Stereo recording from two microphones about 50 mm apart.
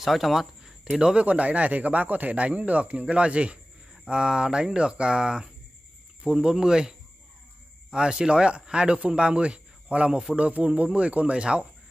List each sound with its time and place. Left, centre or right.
0.0 s speech: centre
1.1 s speech: right